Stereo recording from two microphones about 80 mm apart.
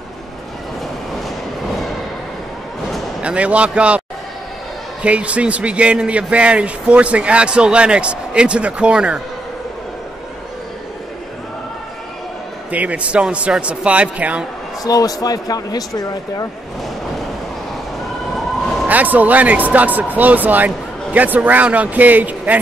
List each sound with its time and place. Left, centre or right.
3.2 s a man's voice: centre
5.0 s a man's voice: centre
12.7 s a man's voice: centre
14.8 s speech: left
18.9 s speech: centre